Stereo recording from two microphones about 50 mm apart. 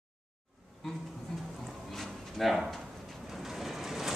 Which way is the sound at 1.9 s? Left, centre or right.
Centre.